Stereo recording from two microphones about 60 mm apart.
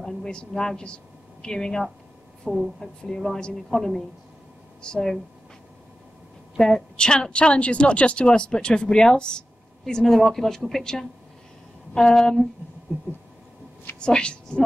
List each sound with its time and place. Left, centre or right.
0.0 s speech: centre
2.4 s a woman's voice: centre
2.8 s a woman's voice: centre
6.6 s a woman's voice: centre
13.9 s a woman's voice: centre